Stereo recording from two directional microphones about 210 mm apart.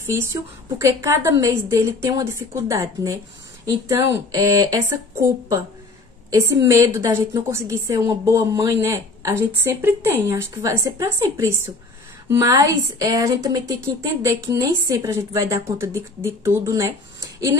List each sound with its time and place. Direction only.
0.1 s a woman's voice: 15° right (ahead or behind)
6.3 s a woman's voice: 15° right (ahead or behind)